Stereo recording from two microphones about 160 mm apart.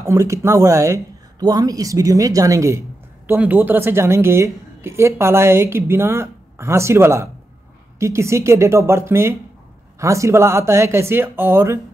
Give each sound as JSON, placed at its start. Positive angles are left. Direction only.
{"t": 0.0, "sound": "a woman's voice", "side_deg": -20}